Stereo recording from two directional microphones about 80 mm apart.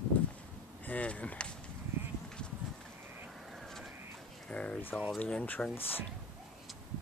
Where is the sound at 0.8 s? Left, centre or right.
Centre.